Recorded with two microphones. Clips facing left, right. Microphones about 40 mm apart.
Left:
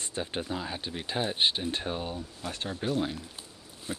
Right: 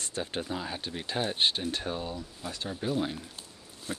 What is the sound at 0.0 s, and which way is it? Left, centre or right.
Speech, centre.